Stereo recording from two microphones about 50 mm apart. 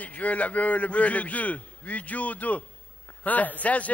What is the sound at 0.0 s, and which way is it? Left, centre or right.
Speech, left.